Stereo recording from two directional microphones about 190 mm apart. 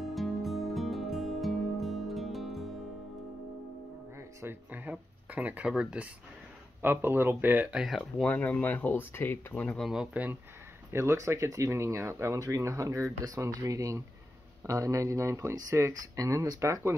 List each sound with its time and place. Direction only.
0.0 s music: centre (ahead or behind)
4.2 s a sound: 15° right (ahead or behind)
6.8 s speech: 10° right (ahead or behind)